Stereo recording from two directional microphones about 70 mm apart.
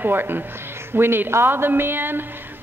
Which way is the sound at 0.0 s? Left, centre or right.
Right.